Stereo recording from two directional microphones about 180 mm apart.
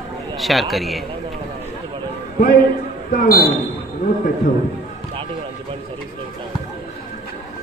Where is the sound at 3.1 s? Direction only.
50° left (ahead or behind).